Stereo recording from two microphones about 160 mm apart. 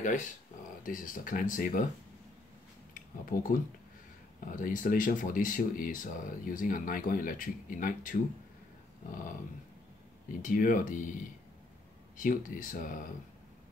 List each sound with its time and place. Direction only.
0.0 s speech: 50° left (ahead or behind)
2.9 s a sound: 60° left (ahead or behind)
4.5 s speech: 55° left (ahead or behind)
10.4 s speech: 55° left (ahead or behind)
12.2 s speech: 55° left (ahead or behind)